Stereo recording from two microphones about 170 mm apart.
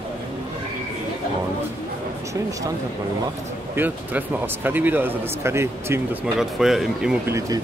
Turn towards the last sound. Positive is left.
turn(degrees=-15)  # may be behind; listen again after turning